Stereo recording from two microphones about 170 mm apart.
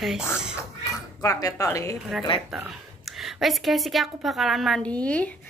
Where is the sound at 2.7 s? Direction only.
Centre (ahead or behind).